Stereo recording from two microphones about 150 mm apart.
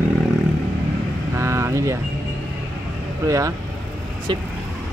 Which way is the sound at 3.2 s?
20° right (ahead or behind).